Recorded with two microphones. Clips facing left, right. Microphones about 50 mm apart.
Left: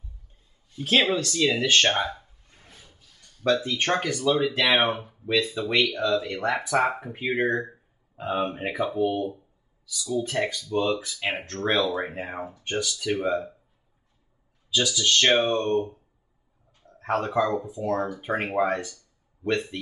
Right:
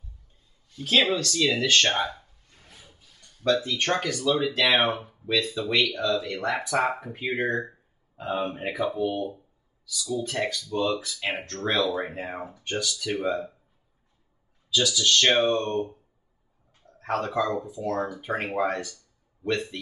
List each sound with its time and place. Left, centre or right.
0.7 s speech: left; by 2.2 s centre
2.7 s a sound: centre
3.6 s speech: centre
7.2 s speech: centre
14.7 s speech: centre
17.0 s speech: centre